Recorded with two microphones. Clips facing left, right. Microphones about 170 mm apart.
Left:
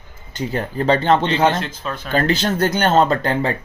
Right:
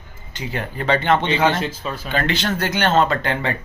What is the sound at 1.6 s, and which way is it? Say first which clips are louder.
Speech: right 1 dB; 5° right (ahead or behind).